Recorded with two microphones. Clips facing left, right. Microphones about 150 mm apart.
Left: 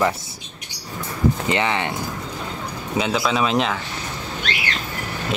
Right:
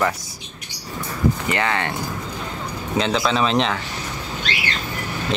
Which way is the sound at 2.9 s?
5° left (ahead or behind).